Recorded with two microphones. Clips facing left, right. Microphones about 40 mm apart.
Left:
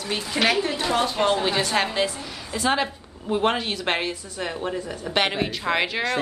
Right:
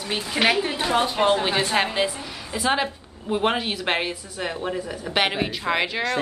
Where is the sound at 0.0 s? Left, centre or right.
Centre.